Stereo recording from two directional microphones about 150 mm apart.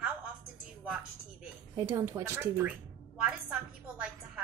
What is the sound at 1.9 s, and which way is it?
Speech, 20° right (ahead or behind).